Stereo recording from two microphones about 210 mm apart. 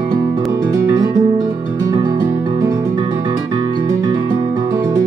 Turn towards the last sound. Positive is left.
turn(degrees=-10)  # may be behind; listen again after turning